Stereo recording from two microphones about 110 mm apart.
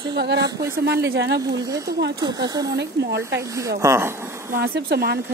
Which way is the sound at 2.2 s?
40° right (ahead or behind).